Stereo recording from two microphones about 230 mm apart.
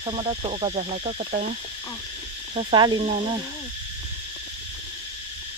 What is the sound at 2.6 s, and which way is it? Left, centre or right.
Speech, right.